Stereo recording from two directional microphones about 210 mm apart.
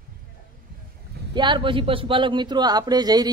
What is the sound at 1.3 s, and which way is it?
A man's voice, 20° right (ahead or behind).